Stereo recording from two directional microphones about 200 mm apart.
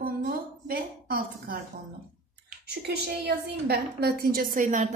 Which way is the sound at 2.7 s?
55° right (ahead or behind).